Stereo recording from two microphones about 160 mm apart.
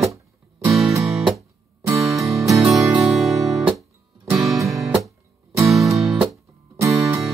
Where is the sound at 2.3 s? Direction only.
20° right (ahead or behind).